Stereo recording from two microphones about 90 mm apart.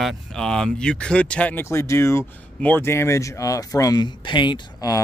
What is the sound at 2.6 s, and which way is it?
Speech, 20° left (ahead or behind).